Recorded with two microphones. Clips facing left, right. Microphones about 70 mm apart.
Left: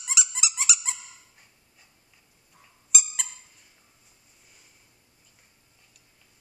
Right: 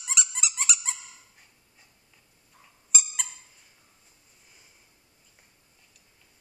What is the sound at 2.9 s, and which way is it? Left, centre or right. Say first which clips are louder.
Owl: even; centre.